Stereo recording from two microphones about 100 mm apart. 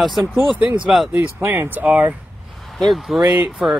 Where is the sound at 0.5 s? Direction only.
15° right (ahead or behind).